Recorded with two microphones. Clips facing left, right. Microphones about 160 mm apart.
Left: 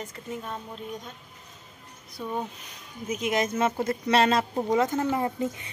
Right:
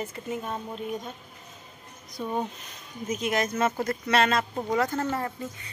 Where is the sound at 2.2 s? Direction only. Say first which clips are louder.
Right 2 dB; centre (ahead or behind).